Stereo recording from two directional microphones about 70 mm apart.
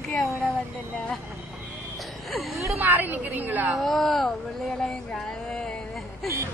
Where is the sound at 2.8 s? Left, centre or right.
Right.